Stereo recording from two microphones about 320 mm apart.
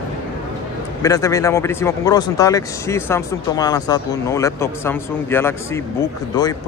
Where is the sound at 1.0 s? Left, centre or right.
Centre.